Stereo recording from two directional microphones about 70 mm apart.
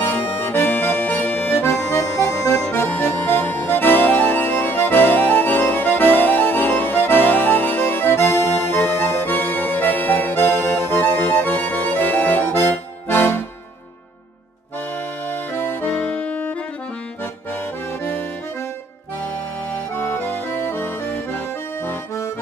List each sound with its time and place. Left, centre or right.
0.0 s accordion: left
1.9 s accordion: left
2.7 s music: left
15.2 s music: left
19.7 s accordion: left